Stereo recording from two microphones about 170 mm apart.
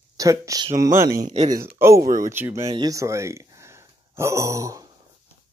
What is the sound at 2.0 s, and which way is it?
Speech, 55° right (ahead or behind).